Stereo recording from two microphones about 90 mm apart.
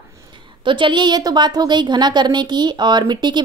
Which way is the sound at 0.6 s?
65° right (ahead or behind).